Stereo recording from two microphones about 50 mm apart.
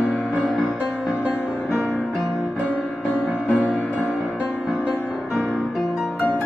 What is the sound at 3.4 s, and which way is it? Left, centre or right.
Music, left.